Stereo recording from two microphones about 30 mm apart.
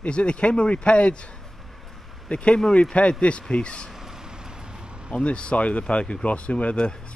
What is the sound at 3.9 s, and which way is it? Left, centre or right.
Vehicle, centre.